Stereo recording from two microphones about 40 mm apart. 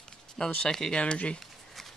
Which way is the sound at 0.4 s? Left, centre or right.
Centre.